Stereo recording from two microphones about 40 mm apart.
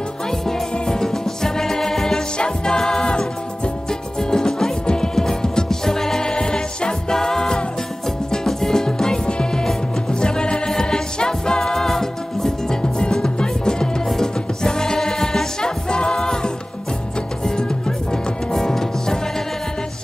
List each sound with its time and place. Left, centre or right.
0.5 s music: centre
17.6 s music: centre